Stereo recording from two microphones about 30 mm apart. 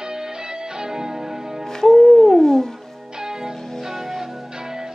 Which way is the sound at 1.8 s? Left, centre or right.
Centre.